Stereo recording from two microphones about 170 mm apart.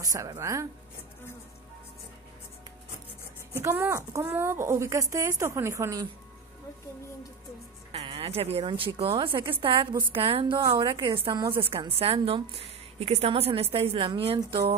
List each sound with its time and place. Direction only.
0.0 s speech: 20° right (ahead or behind)
3.6 s a woman's voice: 15° right (ahead or behind)
7.9 s a woman's voice: 35° right (ahead or behind)